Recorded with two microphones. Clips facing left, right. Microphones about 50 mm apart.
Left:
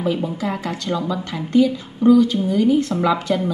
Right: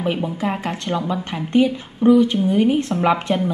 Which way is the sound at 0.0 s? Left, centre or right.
Right.